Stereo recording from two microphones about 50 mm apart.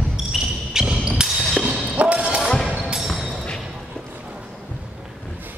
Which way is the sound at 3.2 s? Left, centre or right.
Centre.